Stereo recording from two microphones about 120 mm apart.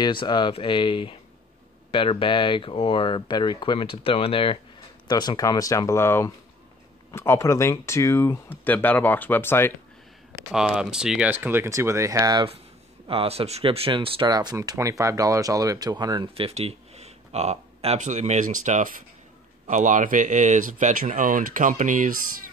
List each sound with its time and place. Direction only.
0.0 s speech: 40° left (ahead or behind)
5.0 s speech: 35° left (ahead or behind); by 9.8 s 20° left (ahead or behind)
10.5 s speech: 5° right (ahead or behind); by 12.4 s 30° right (ahead or behind)
13.0 s speech: 50° right (ahead or behind)
14.3 s speech: 35° right (ahead or behind)
16.3 s speech: 55° right (ahead or behind); by 22.1 s 90° right